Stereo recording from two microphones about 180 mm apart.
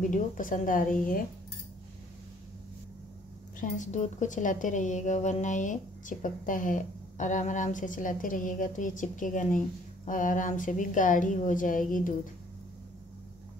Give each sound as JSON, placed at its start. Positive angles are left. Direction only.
{"t": 0.0, "sound": "a woman's voice", "side_deg": 45}
{"t": 3.5, "sound": "a woman's voice", "side_deg": 45}